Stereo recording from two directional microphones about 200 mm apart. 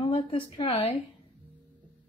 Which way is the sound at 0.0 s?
25° left (ahead or behind).